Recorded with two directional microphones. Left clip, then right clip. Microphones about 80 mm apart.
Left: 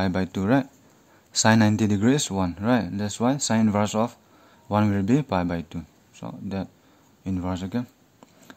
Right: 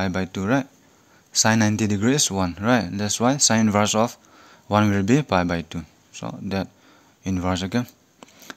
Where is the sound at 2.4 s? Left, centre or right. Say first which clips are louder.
Right 3 dB; centre.